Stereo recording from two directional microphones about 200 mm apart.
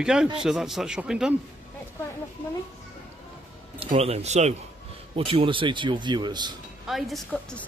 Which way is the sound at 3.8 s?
30° right (ahead or behind).